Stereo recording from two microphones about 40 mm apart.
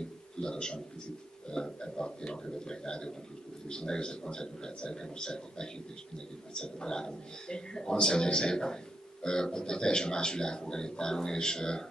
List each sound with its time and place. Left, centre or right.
0.4 s a man's voice: centre